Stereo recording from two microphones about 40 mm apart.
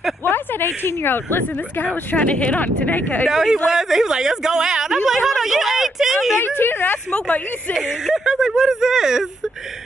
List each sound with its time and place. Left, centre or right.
0.2 s a sound: left
1.8 s speech: left
3.3 s speech: centre
6.3 s speech: left
7.7 s speech: centre